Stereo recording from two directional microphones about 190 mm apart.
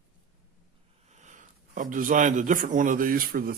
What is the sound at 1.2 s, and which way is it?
Speech, 40° right (ahead or behind).